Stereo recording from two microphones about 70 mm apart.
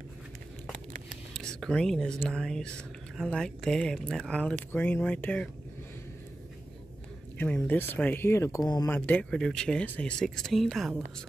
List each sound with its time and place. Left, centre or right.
1.3 s speech: centre
4.7 s speech: left
7.3 s speech: left
9.2 s speech: centre
10.2 s speech: centre